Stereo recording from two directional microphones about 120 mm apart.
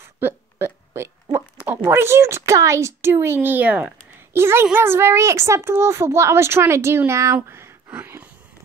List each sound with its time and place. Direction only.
0.2 s hiccup: 20° right (ahead or behind)
1.9 s a child's voice: 20° right (ahead or behind)
7.3 s a sound: 20° right (ahead or behind)